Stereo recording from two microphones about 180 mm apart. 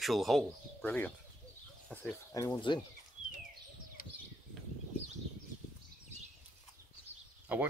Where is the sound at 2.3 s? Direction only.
20° left (ahead or behind).